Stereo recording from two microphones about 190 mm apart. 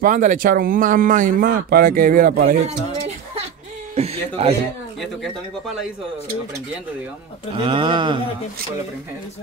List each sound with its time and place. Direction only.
0.0 s speech: 45° right (ahead or behind)
2.6 s a sound: 35° right (ahead or behind)
3.9 s speech: 35° right (ahead or behind)
7.5 s speech: 25° right (ahead or behind)